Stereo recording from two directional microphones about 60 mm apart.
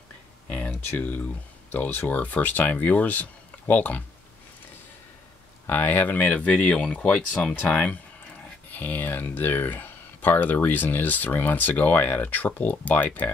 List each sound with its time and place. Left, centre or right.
0.7 s speech: left
5.7 s speech: left